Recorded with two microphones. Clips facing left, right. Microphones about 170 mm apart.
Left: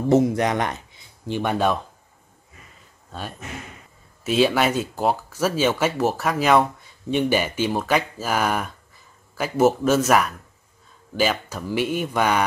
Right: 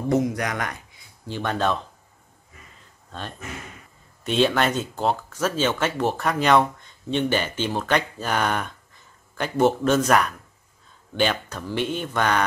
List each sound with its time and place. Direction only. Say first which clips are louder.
0.1 s speech: left 5 dB; 25° left (ahead or behind)
3.1 s speech: left 1 dB; 10° left (ahead or behind)